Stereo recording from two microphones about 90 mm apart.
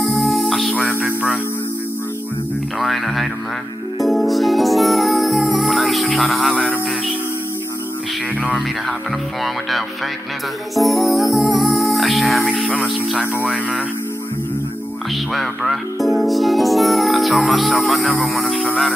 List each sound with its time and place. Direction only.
0.0 s music: centre (ahead or behind)
1.0 s music: 15° right (ahead or behind)
2.8 s music: centre (ahead or behind)
6.5 s music: 15° left (ahead or behind)
9.4 s speech: centre (ahead or behind)
10.7 s music: centre (ahead or behind)
12.8 s speech: 5° right (ahead or behind)
15.3 s speech: centre (ahead or behind)